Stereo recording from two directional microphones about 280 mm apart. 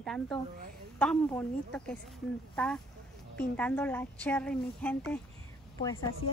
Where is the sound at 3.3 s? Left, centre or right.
Centre.